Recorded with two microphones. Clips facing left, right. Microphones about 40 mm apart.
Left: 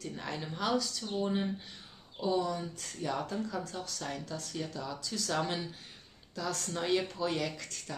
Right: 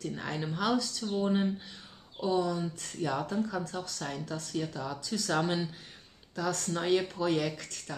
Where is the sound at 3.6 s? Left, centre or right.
Centre.